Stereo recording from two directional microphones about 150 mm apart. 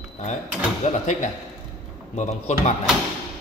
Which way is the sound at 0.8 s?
55° left (ahead or behind).